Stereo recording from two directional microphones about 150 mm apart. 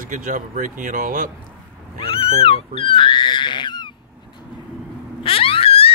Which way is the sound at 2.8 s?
35° left (ahead or behind).